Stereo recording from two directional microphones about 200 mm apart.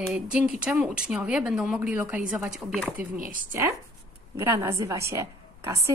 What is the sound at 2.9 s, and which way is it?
Chopping, 45° right (ahead or behind).